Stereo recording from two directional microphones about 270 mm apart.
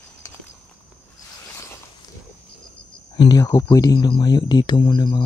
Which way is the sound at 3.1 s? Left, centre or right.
Centre.